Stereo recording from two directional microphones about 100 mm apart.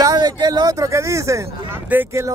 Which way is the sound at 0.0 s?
40° right (ahead or behind).